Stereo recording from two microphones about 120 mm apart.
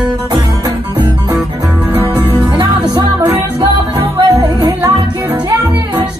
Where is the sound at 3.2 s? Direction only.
20° right (ahead or behind).